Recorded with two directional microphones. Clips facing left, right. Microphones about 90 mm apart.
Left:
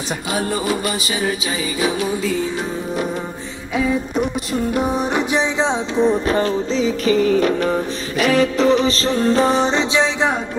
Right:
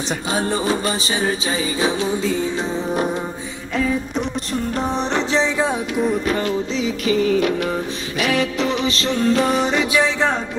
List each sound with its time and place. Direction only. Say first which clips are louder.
0.3 s music: even; 30° right (ahead or behind)
3.7 s music: left 2 dB; 5° left (ahead or behind); by 10.3 s 20° left (ahead or behind)